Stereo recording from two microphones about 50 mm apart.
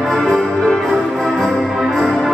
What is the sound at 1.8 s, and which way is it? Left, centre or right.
Music, centre.